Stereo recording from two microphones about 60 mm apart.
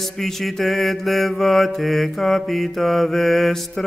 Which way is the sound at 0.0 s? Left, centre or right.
Centre.